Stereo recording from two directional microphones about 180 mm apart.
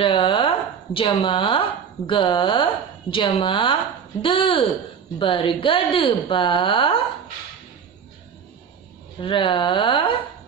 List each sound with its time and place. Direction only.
0.0 s a woman's voice: 30° left (ahead or behind)
9.2 s a woman's voice: 25° left (ahead or behind)